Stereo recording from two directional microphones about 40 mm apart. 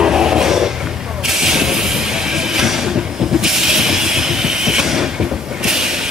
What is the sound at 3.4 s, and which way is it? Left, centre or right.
Train, centre.